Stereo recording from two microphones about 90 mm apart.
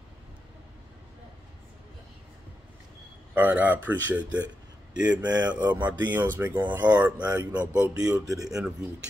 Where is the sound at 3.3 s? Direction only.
20° right (ahead or behind).